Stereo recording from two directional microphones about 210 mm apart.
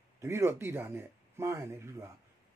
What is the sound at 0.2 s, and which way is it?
Speech, 15° right (ahead or behind).